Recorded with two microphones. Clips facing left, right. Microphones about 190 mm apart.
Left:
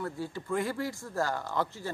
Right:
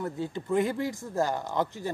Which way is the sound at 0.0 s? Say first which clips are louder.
Right 3 dB; 20° right (ahead or behind).